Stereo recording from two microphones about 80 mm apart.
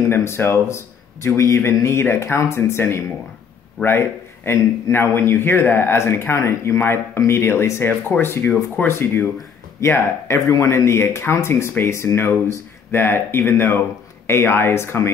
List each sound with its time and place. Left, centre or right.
0.1 s a man's voice: left
4.5 s a man's voice: left